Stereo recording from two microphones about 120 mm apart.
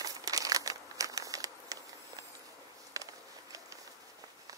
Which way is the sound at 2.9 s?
30° right (ahead or behind).